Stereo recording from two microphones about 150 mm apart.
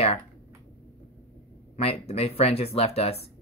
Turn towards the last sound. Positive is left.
turn(degrees=40)  # may be behind; listen again after turning